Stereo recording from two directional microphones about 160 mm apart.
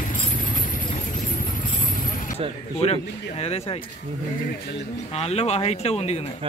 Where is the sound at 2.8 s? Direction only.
40° left (ahead or behind).